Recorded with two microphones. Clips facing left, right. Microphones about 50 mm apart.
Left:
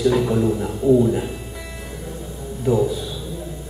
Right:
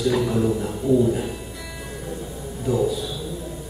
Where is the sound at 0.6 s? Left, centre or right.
Centre.